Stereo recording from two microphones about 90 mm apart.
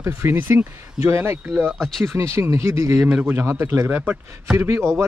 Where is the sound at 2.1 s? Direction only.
30° right (ahead or behind).